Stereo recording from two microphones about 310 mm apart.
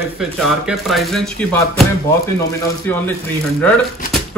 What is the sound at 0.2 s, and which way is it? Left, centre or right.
Speech, centre.